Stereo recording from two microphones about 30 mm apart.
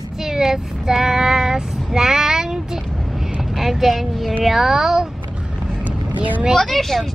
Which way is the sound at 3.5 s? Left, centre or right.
Centre.